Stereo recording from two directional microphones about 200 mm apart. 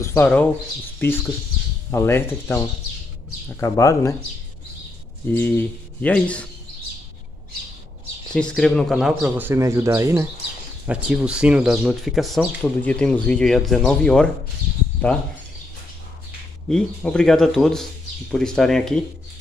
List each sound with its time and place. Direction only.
0.0 s speech: 10° left (ahead or behind)
5.3 s speech: 10° left (ahead or behind)
8.3 s speech: 5° left (ahead or behind)
16.6 s speech: 5° left (ahead or behind)